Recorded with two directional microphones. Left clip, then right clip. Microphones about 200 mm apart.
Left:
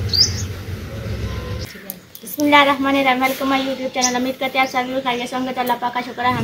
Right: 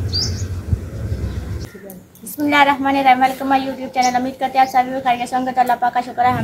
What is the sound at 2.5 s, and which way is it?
A woman's voice, 15° right (ahead or behind).